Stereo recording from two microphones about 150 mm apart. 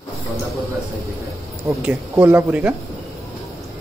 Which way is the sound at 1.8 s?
15° right (ahead or behind).